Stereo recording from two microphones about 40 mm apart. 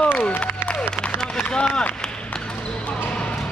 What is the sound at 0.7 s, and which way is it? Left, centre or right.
Applause, left.